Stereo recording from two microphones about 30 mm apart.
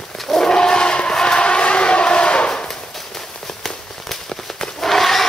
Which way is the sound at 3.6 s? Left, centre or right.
Centre.